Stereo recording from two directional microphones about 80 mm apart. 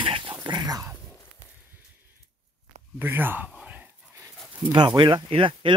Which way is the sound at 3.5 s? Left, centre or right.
Centre.